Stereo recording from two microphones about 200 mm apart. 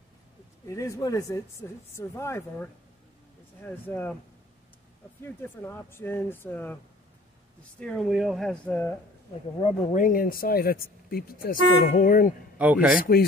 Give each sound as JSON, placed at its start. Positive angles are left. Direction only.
{"t": 0.7, "sound": "speech", "side_deg": 15}
{"t": 5.2, "sound": "speech", "side_deg": 10}
{"t": 7.8, "sound": "speech", "side_deg": 5}
{"t": 9.9, "sound": "speech", "side_deg": 45}
{"t": 12.5, "sound": "a man's voice", "side_deg": -5}